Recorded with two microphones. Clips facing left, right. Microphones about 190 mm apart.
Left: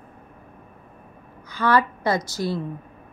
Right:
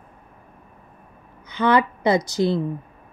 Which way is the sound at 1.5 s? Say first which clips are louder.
Right 2 dB; 20° right (ahead or behind).